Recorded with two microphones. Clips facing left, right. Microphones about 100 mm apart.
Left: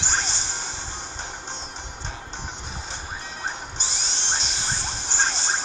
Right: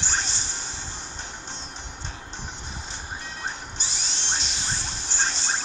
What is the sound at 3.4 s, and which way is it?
Music, 25° left (ahead or behind).